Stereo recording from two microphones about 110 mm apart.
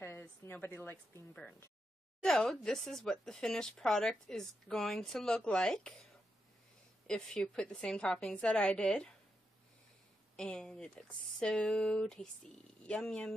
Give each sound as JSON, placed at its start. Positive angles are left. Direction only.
{"t": 0.4, "sound": "a woman's voice", "side_deg": 20}
{"t": 1.3, "sound": "a woman's voice", "side_deg": 10}
{"t": 7.1, "sound": "a woman's voice", "side_deg": 5}
{"t": 10.3, "sound": "a woman's voice", "side_deg": 5}